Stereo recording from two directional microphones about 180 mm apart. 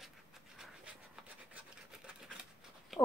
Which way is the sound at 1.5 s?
5° right (ahead or behind).